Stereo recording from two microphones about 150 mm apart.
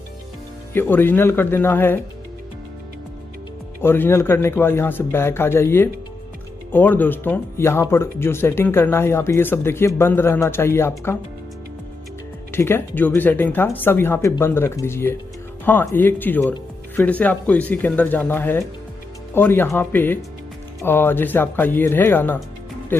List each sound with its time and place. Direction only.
0.7 s speech: 15° left (ahead or behind)
3.8 s speech: 15° left (ahead or behind)
12.4 s speech: 15° left (ahead or behind)